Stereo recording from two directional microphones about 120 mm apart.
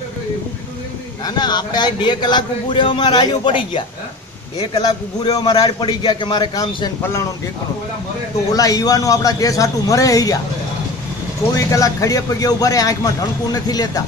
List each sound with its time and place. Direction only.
1.2 s a man's voice: 35° left (ahead or behind)
7.0 s a man's voice: 20° left (ahead or behind)
8.5 s a man's voice: 30° left (ahead or behind)
11.5 s a man's voice: 30° left (ahead or behind)